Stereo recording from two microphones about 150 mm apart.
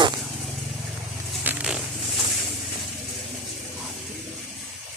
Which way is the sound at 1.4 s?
10° right (ahead or behind).